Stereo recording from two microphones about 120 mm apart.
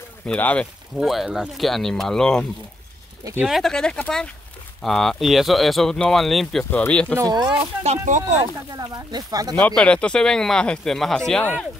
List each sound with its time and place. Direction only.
0.2 s speech: 15° left (ahead or behind)
0.9 s speech: centre (ahead or behind)
3.4 s speech: centre (ahead or behind)
6.7 s speech: 10° left (ahead or behind)
7.2 s speech: 30° right (ahead or behind)
7.8 s speech: 70° right (ahead or behind)
8.4 s speech: 30° right (ahead or behind)
9.6 s speech: 10° left (ahead or behind)